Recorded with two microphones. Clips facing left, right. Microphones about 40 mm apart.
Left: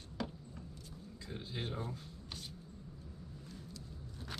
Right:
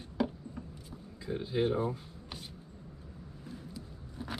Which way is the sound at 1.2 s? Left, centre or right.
Centre.